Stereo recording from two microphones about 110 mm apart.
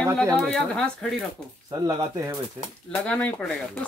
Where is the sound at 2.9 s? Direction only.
10° left (ahead or behind).